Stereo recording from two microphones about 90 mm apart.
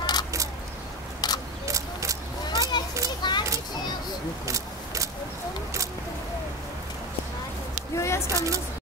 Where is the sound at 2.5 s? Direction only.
50° left (ahead or behind).